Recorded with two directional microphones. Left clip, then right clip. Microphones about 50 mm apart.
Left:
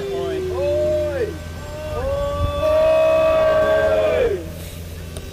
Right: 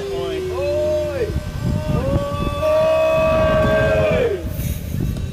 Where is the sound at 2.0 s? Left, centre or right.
Centre.